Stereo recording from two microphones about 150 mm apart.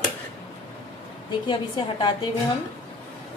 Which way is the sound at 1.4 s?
35° left (ahead or behind).